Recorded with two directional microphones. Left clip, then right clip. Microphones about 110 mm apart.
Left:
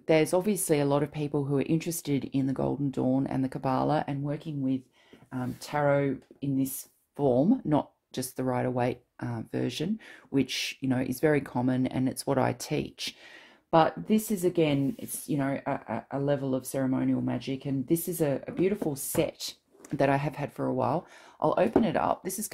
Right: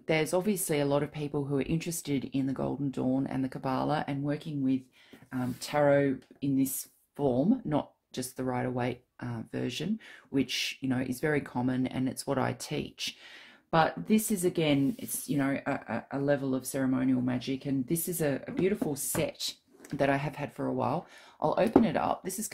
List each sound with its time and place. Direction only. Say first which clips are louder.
0.0 s speech: left 4 dB; 45° left (ahead or behind)
4.3 s speech: right 1 dB; 30° left (ahead or behind)
7.2 s speech: left 4 dB; 50° left (ahead or behind)
13.7 s speech: left 3 dB; 40° left (ahead or behind)